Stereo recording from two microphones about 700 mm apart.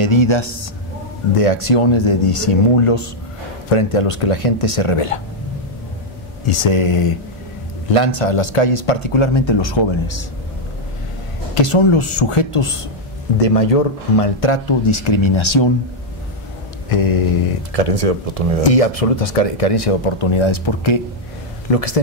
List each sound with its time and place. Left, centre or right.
0.0 s a man's voice: left
1.3 s speech: left
6.4 s speech: left
11.5 s speech: left
13.4 s speech: left
16.9 s speech: left
17.7 s speech: right
18.6 s speech: left
21.7 s speech: left